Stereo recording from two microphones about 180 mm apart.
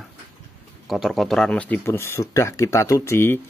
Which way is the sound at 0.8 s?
Centre (ahead or behind).